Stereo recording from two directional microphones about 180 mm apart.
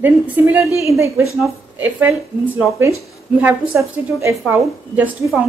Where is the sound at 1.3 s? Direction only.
Centre (ahead or behind).